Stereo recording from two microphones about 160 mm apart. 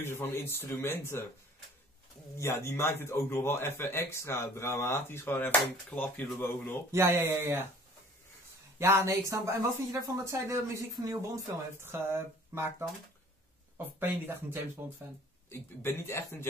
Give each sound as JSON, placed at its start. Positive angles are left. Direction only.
{"t": 0.0, "sound": "a man's voice", "side_deg": 15}
{"t": 2.3, "sound": "a man's voice", "side_deg": 20}
{"t": 6.9, "sound": "speech", "side_deg": -15}
{"t": 8.7, "sound": "speech", "side_deg": -15}
{"t": 13.9, "sound": "speech", "side_deg": -15}
{"t": 15.5, "sound": "a man's voice", "side_deg": 15}